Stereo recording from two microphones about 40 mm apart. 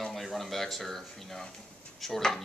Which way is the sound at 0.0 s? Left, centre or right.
Centre.